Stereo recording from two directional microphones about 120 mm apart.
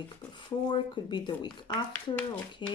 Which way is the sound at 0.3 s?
40° left (ahead or behind).